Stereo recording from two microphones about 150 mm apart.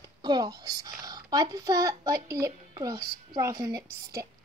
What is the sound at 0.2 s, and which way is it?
A woman's voice, 25° right (ahead or behind).